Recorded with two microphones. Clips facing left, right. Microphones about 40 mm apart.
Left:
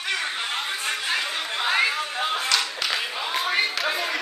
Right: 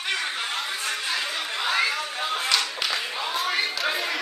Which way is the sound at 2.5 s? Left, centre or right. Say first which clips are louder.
Left 1 dB; centre.